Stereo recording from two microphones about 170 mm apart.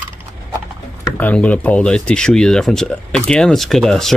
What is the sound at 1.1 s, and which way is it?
Speech, 10° left (ahead or behind).